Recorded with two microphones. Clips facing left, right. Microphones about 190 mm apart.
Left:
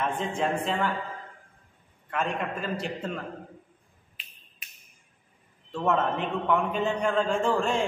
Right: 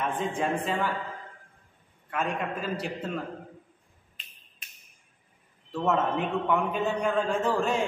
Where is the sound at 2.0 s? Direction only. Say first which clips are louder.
Even; 5° right (ahead or behind).